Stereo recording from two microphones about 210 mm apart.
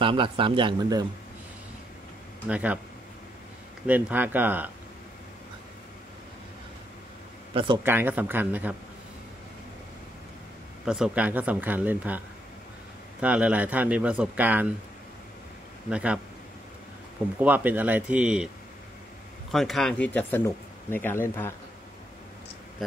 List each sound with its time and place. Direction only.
0.0 s speech: 25° right (ahead or behind)
2.4 s speech: 5° right (ahead or behind)
3.8 s speech: 10° right (ahead or behind)
7.5 s speech: 25° right (ahead or behind)
7.8 s speech: 10° right (ahead or behind)
10.9 s speech: 5° right (ahead or behind)
13.2 s speech: 5° right (ahead or behind)
15.9 s speech: 5° right (ahead or behind)
17.4 s speech: 10° right (ahead or behind)
19.5 s speech: centre (ahead or behind)